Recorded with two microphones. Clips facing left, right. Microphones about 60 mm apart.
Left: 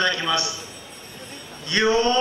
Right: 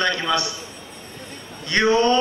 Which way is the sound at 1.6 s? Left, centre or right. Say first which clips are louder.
Right 2 dB; right.